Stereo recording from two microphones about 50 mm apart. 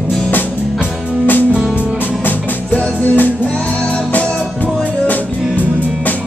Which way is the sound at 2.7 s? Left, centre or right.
Left.